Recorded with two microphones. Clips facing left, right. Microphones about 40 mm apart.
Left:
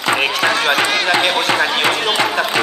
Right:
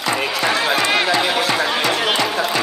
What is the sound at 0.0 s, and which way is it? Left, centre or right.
Music, left.